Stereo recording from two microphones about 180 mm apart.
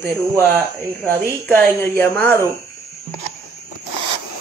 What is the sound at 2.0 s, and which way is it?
Speech, 15° left (ahead or behind).